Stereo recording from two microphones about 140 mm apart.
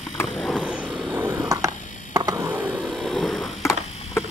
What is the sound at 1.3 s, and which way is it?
Mechanisms, 25° right (ahead or behind).